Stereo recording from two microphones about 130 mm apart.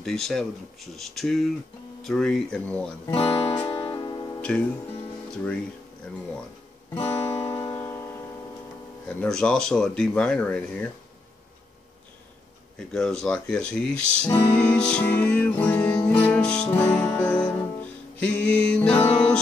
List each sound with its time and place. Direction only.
0.0 s speech: 5° left (ahead or behind)
3.2 s speech: 40° left (ahead or behind)
3.5 s music: 15° left (ahead or behind)
3.8 s music: 30° left (ahead or behind)
4.4 s music: 10° left (ahead or behind)
5.3 s speech: 10° left (ahead or behind)
7.0 s guitar: 15° left (ahead or behind)
7.5 s music: 20° left (ahead or behind)
9.2 s speech: 5° left (ahead or behind)
12.9 s speech: 5° left (ahead or behind)
16.7 s music: 15° left (ahead or behind)